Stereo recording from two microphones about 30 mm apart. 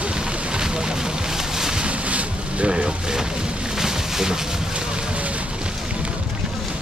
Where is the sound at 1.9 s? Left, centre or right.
Right.